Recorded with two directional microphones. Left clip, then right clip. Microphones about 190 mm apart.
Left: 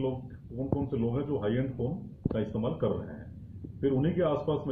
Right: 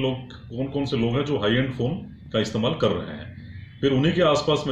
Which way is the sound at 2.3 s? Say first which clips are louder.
Right 10 dB; 20° right (ahead or behind).